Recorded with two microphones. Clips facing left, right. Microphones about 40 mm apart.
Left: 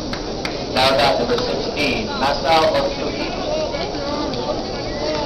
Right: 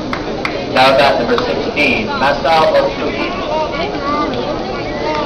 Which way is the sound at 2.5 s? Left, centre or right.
Centre.